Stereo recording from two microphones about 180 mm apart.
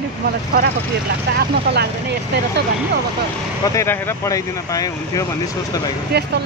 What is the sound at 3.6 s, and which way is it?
Speech, 15° left (ahead or behind).